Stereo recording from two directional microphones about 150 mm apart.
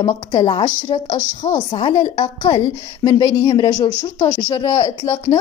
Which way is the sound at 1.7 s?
35° left (ahead or behind).